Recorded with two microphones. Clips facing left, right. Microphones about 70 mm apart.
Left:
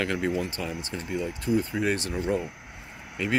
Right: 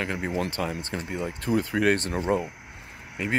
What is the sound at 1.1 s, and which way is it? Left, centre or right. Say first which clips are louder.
Speech: left 3 dB; right.